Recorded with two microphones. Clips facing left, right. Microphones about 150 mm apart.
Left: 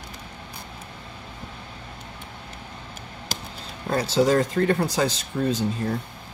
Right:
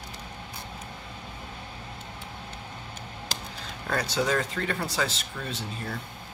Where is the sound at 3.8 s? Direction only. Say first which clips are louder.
Left 7 dB; 25° left (ahead or behind).